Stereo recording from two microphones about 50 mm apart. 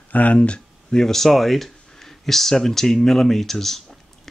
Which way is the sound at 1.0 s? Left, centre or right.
Centre.